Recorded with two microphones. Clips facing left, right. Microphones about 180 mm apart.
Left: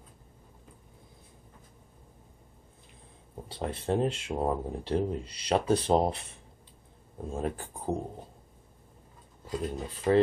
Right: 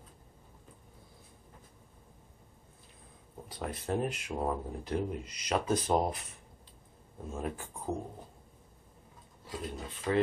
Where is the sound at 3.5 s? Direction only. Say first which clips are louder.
Left 4 dB; 25° left (ahead or behind).